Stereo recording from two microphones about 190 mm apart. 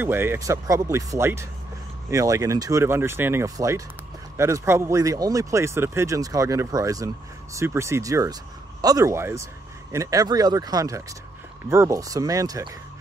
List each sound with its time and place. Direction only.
0.0 s speech: 10° right (ahead or behind)